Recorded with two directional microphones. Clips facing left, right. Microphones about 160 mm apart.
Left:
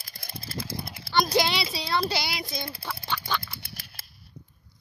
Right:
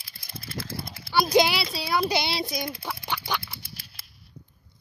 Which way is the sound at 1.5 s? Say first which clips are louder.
Right 1 dB; centre (ahead or behind).